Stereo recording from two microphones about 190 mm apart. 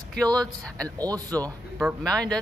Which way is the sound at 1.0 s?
20° right (ahead or behind).